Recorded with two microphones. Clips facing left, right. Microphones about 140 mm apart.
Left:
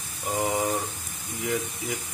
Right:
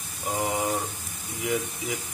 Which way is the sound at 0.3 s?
Centre (ahead or behind).